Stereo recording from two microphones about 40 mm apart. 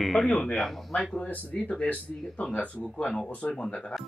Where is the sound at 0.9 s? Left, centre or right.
Left.